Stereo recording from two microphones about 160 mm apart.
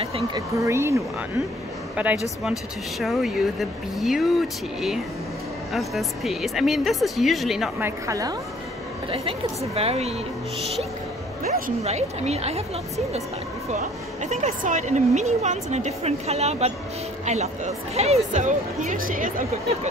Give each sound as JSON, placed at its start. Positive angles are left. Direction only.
{"t": 0.0, "sound": "a woman's voice", "side_deg": -40}
{"t": 0.6, "sound": "a woman's voice", "side_deg": -15}
{"t": 7.8, "sound": "a woman's voice", "side_deg": -20}
{"t": 9.1, "sound": "a woman's voice", "side_deg": -40}
{"t": 11.8, "sound": "a woman's voice", "side_deg": -40}
{"t": 13.7, "sound": "a woman's voice", "side_deg": -50}